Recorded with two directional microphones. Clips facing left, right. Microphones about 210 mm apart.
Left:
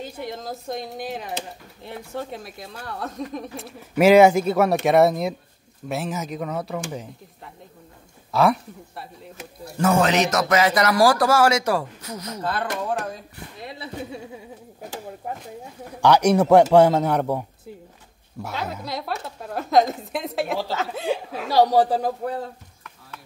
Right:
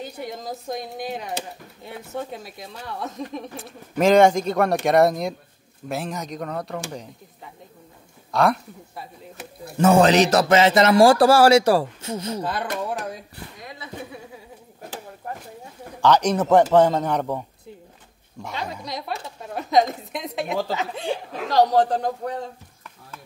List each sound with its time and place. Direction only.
0.0 s speech: centre (ahead or behind)
8.3 s speech: centre (ahead or behind)
9.8 s speech: 30° right (ahead or behind)
12.4 s speech: 10° right (ahead or behind)
13.7 s speech: 30° left (ahead or behind)
16.0 s a man's voice: 10° left (ahead or behind)